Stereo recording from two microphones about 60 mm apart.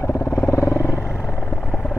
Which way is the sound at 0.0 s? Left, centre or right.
Left.